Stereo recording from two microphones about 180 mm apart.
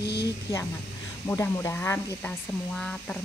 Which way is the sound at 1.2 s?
15° left (ahead or behind).